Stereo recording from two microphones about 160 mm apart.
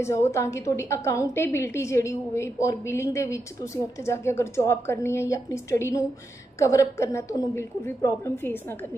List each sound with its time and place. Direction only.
0.0 s a woman's voice: 15° left (ahead or behind)